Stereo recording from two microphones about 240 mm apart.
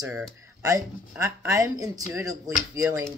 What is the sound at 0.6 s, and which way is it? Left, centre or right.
Speech, centre.